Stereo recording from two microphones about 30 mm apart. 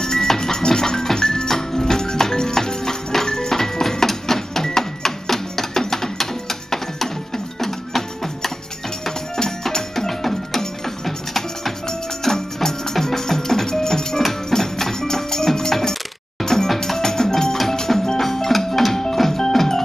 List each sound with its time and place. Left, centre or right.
0.0 s music: left
12.3 s music: centre
19.5 s organ: centre